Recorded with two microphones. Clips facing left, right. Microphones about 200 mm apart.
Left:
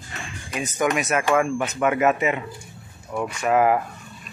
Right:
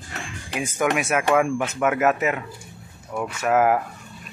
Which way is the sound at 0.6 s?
10° right (ahead or behind).